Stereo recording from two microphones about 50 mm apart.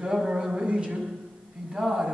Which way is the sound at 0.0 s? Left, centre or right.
Centre.